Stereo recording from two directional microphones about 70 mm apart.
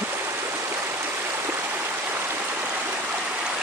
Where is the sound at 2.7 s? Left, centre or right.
Centre.